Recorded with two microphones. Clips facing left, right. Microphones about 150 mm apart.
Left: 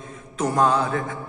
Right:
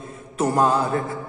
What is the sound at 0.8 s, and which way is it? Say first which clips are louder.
Mantra: right 2 dB; 35° right (ahead or behind).